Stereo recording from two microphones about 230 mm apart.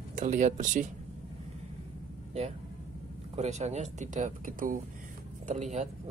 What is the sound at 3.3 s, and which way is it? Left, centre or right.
Speech, right.